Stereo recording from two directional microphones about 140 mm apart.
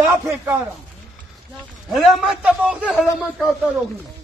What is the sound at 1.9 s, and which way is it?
A man's voice, centre (ahead or behind).